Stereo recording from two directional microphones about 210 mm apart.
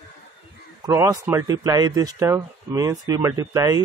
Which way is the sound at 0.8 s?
15° right (ahead or behind).